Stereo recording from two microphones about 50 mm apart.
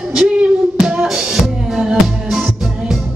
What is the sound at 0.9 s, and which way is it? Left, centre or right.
Music, centre.